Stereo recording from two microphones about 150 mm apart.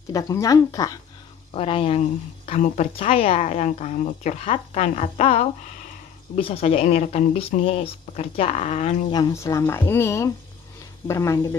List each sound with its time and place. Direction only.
0.1 s speech: 20° left (ahead or behind)
1.5 s a woman's voice: 35° left (ahead or behind)
9.3 s speech: 20° left (ahead or behind)